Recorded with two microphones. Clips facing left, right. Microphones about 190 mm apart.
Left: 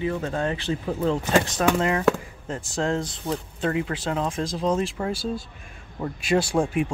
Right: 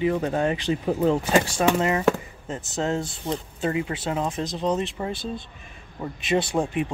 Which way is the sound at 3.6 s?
5° right (ahead or behind).